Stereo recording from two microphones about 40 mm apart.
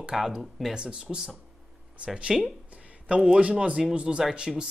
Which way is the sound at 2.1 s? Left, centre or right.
Right.